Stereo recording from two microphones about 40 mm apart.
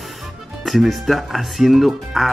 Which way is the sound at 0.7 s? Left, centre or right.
Centre.